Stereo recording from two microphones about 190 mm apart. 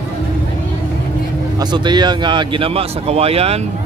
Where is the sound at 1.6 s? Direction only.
25° right (ahead or behind).